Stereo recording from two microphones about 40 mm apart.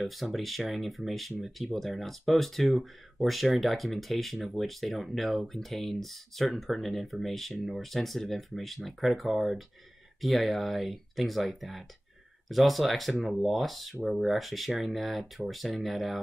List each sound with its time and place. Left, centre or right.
0.0 s speech: centre